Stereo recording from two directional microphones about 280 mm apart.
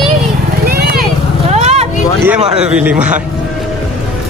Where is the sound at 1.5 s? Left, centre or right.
Right.